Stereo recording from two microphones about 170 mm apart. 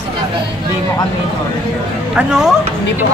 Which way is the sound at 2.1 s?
5° right (ahead or behind).